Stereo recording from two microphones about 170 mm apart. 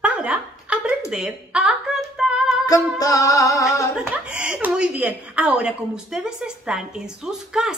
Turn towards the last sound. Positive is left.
turn(degrees=-5)  # may be behind; listen again after turning